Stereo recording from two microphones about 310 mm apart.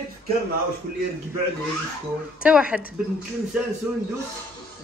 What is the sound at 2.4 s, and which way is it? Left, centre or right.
Speech, centre.